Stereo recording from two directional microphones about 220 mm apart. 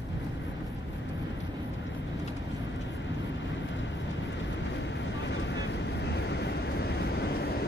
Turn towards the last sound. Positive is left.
turn(degrees=45)  # may be behind; listen again after turning